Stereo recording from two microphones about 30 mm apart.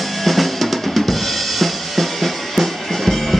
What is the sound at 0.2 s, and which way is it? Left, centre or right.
Drum kit, centre.